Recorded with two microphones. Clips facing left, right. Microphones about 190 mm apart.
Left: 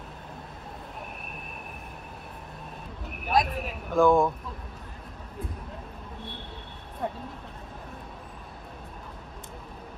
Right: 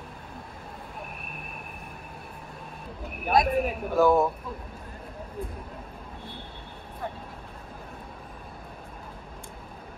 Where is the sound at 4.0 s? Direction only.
5° right (ahead or behind).